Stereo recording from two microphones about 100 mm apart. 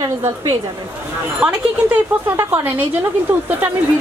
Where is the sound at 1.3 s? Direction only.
20° right (ahead or behind).